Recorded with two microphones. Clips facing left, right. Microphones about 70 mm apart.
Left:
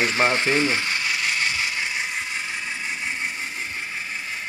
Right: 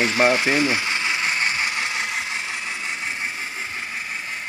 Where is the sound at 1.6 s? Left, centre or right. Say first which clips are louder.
Right 2 dB; right.